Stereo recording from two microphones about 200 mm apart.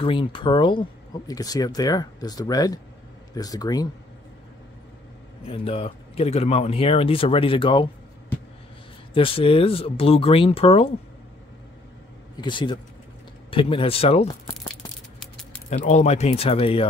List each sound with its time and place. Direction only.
0.0 s speech: 25° left (ahead or behind)
5.4 s speech: 30° left (ahead or behind)
9.1 s speech: 25° left (ahead or behind)
12.4 s speech: 25° left (ahead or behind)
15.7 s speech: 35° left (ahead or behind)